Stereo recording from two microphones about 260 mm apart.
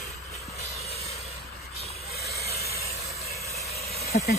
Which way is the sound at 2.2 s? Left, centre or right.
Left.